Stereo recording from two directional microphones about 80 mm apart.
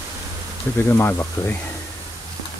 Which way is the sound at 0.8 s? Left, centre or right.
Left.